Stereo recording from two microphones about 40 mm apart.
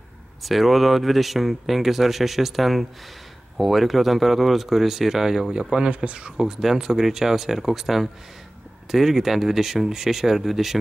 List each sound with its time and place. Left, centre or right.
0.4 s speech: centre; by 6.3 s right
6.3 s speech: centre